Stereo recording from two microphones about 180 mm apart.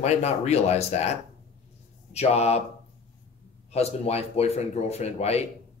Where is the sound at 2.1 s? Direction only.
35° left (ahead or behind).